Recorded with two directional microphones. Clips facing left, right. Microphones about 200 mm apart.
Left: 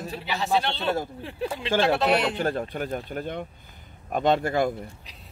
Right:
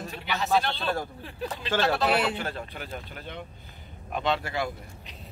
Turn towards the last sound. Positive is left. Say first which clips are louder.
# left 6 dB
turn(degrees=50)  # may be behind; listen again after turning